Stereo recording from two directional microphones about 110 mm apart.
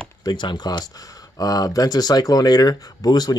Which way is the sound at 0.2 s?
45° left (ahead or behind).